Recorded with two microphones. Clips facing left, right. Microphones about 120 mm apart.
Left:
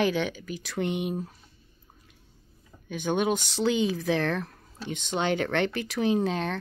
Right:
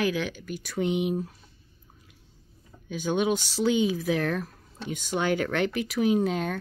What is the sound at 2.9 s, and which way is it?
Speech, 55° left (ahead or behind).